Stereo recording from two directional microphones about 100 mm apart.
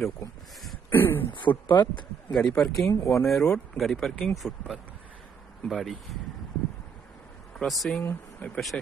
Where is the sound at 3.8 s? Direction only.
Centre (ahead or behind).